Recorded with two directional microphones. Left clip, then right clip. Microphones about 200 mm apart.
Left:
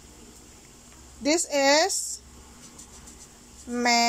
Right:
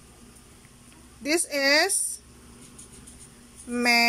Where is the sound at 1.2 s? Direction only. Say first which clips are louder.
Left 2 dB; 5° right (ahead or behind).